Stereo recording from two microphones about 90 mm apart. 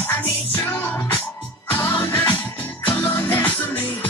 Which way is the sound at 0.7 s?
25° left (ahead or behind).